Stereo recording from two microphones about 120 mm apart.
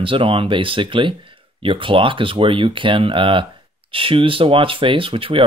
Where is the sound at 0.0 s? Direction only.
45° right (ahead or behind).